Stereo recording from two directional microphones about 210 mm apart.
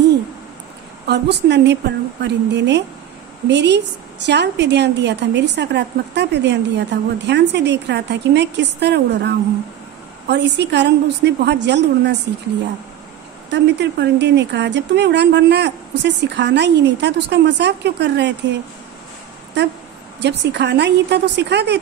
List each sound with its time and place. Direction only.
1.0 s a woman's voice: 50° right (ahead or behind)
13.5 s a woman's voice: 55° right (ahead or behind)
20.2 s a woman's voice: 55° right (ahead or behind)